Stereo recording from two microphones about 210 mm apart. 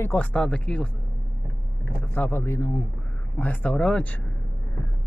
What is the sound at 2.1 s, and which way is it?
A man's voice, 10° left (ahead or behind).